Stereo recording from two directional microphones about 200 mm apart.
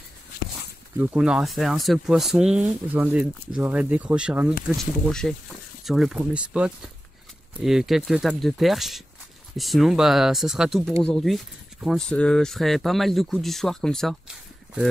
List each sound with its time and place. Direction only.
0.9 s speech: 5° right (ahead or behind)